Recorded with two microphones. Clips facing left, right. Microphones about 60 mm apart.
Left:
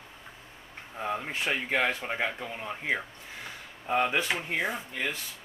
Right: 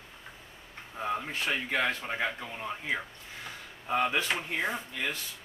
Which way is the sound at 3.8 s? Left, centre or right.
Centre.